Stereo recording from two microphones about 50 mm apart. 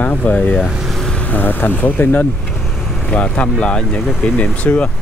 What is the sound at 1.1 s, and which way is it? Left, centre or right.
Vehicle, left.